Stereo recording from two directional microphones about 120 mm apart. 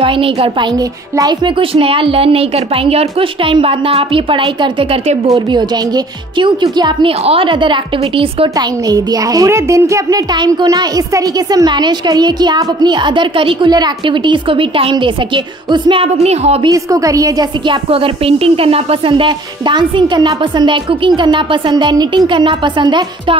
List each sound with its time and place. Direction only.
0.0 s a woman's voice: 50° right (ahead or behind)
0.7 s a child's voice: 35° right (ahead or behind)
1.6 s a woman's voice: 50° right (ahead or behind)
8.5 s a child's voice: 30° right (ahead or behind); by 16.5 s 60° right (ahead or behind)
16.6 s a woman's voice: 30° right (ahead or behind)
17.6 s a woman's voice: 50° right (ahead or behind)